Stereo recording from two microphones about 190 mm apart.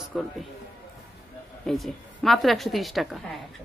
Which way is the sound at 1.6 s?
Centre (ahead or behind).